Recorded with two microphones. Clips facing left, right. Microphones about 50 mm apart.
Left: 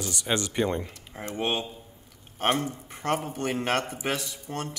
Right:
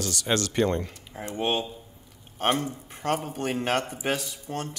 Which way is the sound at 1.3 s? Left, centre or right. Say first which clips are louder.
Right 2 dB; left.